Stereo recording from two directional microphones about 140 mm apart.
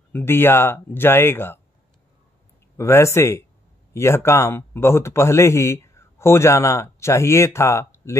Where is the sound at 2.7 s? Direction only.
20° left (ahead or behind).